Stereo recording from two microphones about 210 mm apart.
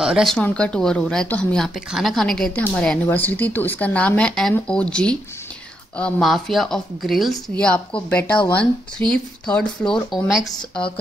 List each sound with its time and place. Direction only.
0.0 s speech: centre (ahead or behind)
10.4 s speech: 20° left (ahead or behind)